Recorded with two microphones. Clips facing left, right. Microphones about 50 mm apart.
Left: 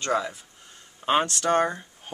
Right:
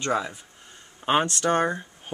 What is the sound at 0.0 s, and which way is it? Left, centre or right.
Speech, centre.